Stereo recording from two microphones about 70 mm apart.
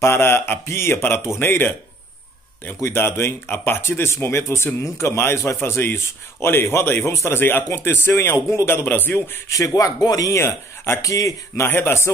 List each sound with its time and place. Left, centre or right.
0.0 s a man's voice: left
9.8 s speech: left
10.3 s a man's voice: left
11.0 s speech: left
11.7 s a man's voice: left